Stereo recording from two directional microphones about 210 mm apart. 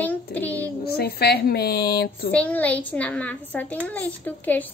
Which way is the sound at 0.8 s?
50° left (ahead or behind).